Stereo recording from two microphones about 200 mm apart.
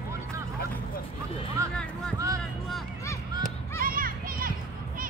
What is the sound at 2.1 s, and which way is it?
Music, 15° right (ahead or behind).